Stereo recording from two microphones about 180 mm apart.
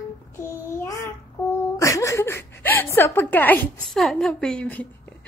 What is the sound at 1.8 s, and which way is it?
Chuckle, 15° left (ahead or behind).